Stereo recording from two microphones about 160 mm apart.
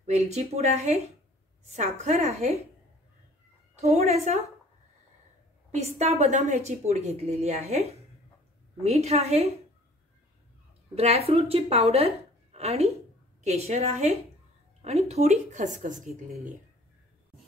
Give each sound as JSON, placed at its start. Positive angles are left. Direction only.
{"t": 0.0, "sound": "a woman's voice", "side_deg": -45}
{"t": 3.7, "sound": "a woman's voice", "side_deg": -45}
{"t": 5.7, "sound": "a woman's voice", "side_deg": -45}
{"t": 8.8, "sound": "a woman's voice", "side_deg": -40}
{"t": 11.0, "sound": "a woman's voice", "side_deg": -40}